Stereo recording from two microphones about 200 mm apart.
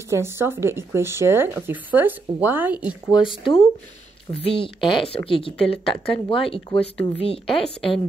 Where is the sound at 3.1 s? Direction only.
25° left (ahead or behind).